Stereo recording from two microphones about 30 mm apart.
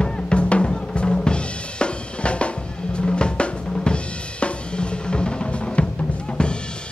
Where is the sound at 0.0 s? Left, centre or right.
Left.